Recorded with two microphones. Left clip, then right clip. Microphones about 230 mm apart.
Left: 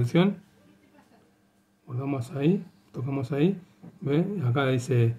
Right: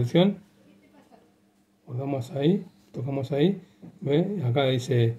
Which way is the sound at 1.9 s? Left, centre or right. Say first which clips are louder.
Right 2 dB; centre.